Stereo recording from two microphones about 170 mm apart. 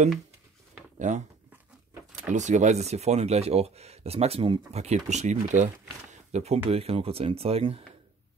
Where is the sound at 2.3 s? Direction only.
45° right (ahead or behind).